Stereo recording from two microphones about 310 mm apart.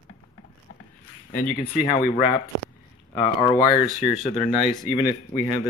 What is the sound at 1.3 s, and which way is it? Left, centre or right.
Speech, left.